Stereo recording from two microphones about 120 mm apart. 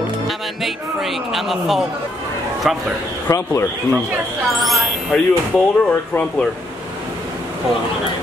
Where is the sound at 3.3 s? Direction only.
25° left (ahead or behind).